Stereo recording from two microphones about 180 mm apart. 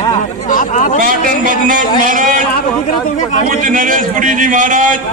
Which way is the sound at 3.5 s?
50° right (ahead or behind).